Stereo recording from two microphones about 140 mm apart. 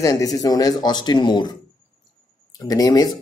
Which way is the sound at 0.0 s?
25° left (ahead or behind).